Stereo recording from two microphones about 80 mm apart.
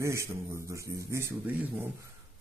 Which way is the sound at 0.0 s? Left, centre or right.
Right.